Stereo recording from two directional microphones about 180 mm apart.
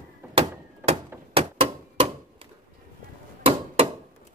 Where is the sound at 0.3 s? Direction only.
30° right (ahead or behind).